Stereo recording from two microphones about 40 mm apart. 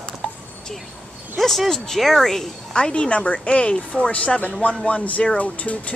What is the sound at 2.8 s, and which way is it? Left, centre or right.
Speech, left.